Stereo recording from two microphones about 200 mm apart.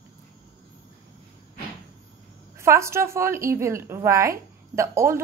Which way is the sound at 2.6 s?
15° right (ahead or behind).